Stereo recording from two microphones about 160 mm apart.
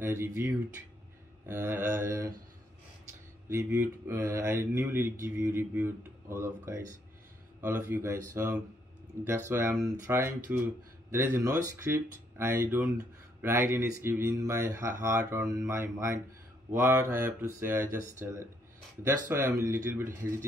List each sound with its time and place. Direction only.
0.0 s speech: 10° right (ahead or behind)
3.4 s speech: 15° right (ahead or behind)